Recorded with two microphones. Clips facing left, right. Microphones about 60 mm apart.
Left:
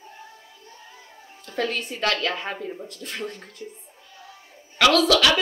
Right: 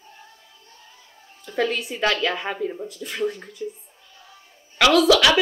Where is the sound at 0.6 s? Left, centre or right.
Left.